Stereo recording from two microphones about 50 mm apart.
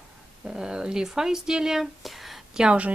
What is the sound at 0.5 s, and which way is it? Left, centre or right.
Speech, centre.